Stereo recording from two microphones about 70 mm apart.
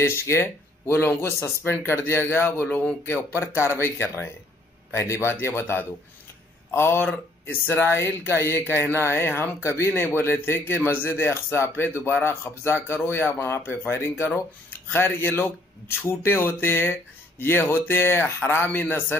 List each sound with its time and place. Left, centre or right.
0.0 s speech: left